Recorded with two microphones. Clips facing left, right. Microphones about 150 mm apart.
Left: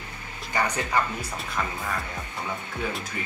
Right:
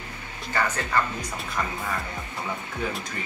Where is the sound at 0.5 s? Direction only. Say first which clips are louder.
Even; 15° left (ahead or behind).